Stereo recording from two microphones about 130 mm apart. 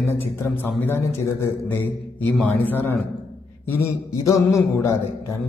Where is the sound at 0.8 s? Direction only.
15° left (ahead or behind).